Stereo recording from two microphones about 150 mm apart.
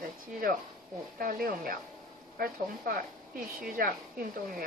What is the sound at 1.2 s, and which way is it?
Speech, 70° right (ahead or behind).